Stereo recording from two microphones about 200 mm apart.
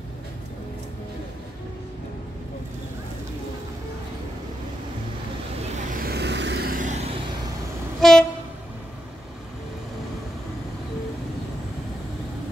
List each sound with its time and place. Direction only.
5.9 s vehicle: 50° right (ahead or behind); by 7.2 s 35° right (ahead or behind)
8.0 s train: 5° left (ahead or behind)